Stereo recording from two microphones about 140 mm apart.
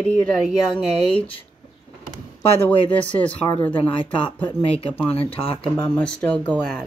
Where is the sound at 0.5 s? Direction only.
50° right (ahead or behind).